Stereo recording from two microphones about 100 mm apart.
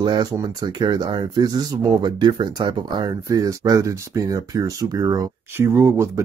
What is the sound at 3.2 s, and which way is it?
Speech, 35° right (ahead or behind).